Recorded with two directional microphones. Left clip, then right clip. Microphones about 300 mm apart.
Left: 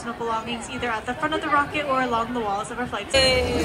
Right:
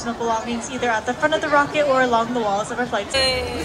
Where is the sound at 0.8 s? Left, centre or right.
Right.